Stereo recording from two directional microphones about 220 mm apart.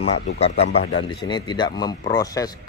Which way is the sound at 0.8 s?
55° left (ahead or behind).